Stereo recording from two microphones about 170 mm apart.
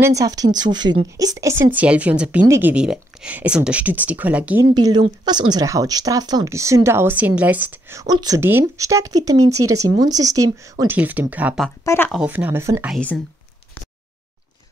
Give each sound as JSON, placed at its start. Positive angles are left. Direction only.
{"t": 0.0, "sound": "speech", "side_deg": -20}
{"t": 4.7, "sound": "speech", "side_deg": -25}
{"t": 11.8, "sound": "speech", "side_deg": 15}
{"t": 12.1, "sound": "speech", "side_deg": -5}
{"t": 12.9, "sound": "speech", "side_deg": 5}